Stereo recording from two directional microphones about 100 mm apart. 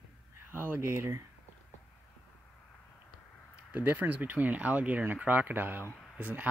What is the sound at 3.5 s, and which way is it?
Speech, 15° right (ahead or behind).